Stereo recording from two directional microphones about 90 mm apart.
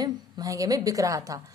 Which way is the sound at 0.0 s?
40° right (ahead or behind).